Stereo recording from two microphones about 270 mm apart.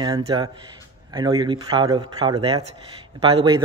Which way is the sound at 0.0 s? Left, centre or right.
Centre.